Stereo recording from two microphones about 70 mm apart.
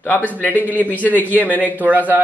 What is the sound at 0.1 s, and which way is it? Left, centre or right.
Speech, left.